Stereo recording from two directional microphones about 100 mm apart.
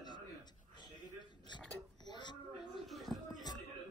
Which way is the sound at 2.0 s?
50° left (ahead or behind).